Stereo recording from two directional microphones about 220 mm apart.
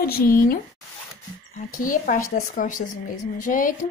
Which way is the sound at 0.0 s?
45° left (ahead or behind).